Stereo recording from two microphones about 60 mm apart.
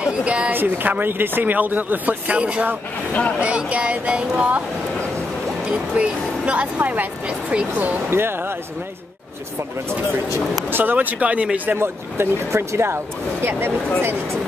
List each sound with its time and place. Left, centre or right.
0.0 s speech: centre
0.5 s speech: right
3.1 s speech: left
3.3 s speech: right
5.7 s speech: centre
8.1 s speech: right
10.7 s speech: right
11.8 s speech: right